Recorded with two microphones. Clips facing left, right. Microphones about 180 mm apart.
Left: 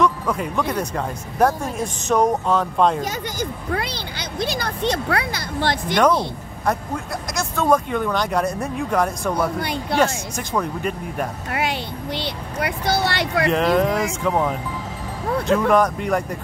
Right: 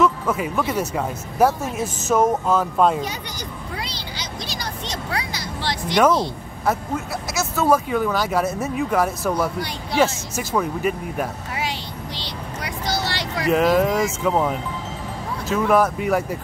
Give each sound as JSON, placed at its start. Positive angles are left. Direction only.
{"t": 0.0, "sound": "speech", "side_deg": -5}
{"t": 3.0, "sound": "speech", "side_deg": 50}
{"t": 7.3, "sound": "speech", "side_deg": -5}
{"t": 9.6, "sound": "speech", "side_deg": 55}
{"t": 9.9, "sound": "speech", "side_deg": -5}
{"t": 12.2, "sound": "speech", "side_deg": 55}
{"t": 13.5, "sound": "speech", "side_deg": -5}
{"t": 15.4, "sound": "speech", "side_deg": -5}